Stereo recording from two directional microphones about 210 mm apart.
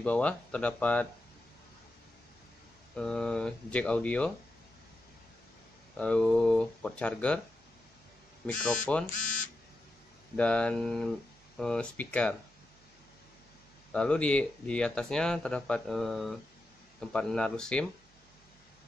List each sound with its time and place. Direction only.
0.0 s speech: 5° left (ahead or behind)
3.0 s speech: 5° left (ahead or behind)
5.9 s speech: 5° left (ahead or behind)
9.1 s speech: 40° left (ahead or behind)
10.3 s speech: 5° left (ahead or behind)
13.9 s speech: 5° left (ahead or behind)